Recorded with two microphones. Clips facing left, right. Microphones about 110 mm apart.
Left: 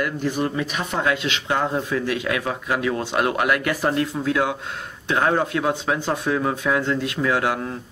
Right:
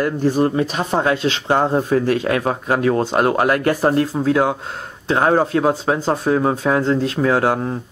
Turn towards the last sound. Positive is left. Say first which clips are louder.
# right 5 dB
turn(degrees=-30)  # may be behind; listen again after turning